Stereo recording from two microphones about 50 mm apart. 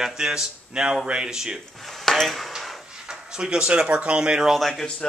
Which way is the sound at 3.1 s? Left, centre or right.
Centre.